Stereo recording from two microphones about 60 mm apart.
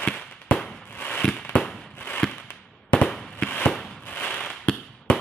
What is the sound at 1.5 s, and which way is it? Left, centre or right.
Fireworks, left.